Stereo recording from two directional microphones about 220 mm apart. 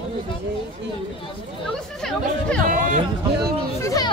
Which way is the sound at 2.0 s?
5° left (ahead or behind).